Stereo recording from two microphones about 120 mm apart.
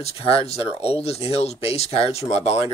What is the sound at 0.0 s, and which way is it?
Speech, 55° left (ahead or behind).